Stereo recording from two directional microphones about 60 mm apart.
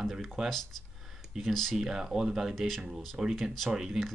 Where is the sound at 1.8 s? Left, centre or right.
Centre.